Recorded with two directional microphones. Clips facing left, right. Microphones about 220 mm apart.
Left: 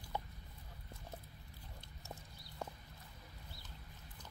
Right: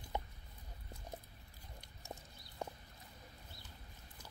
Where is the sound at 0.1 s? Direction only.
20° right (ahead or behind).